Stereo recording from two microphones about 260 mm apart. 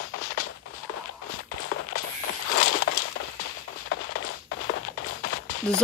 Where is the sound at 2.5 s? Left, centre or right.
Left.